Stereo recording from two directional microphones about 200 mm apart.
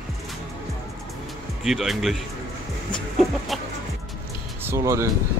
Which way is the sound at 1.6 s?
Centre (ahead or behind).